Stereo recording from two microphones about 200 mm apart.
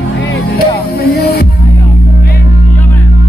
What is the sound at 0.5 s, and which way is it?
Music, 50° left (ahead or behind).